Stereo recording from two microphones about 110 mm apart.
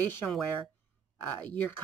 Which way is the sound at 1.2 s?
15° left (ahead or behind).